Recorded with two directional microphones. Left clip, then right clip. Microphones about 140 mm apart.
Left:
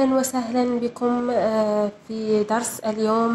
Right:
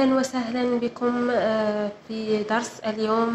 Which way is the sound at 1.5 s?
25° right (ahead or behind).